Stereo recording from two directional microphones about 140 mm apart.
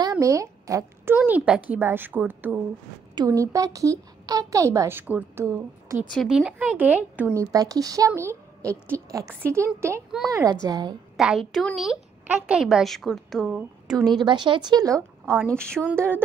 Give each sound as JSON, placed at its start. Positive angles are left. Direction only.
{"t": 0.0, "sound": "speech", "side_deg": -25}
{"t": 3.2, "sound": "a woman's voice", "side_deg": -25}
{"t": 6.0, "sound": "a woman's voice", "side_deg": 5}
{"t": 7.3, "sound": "a woman's voice", "side_deg": -25}
{"t": 11.1, "sound": "a woman's voice", "side_deg": 0}
{"t": 14.2, "sound": "speech", "side_deg": -35}
{"t": 15.2, "sound": "speech", "side_deg": 10}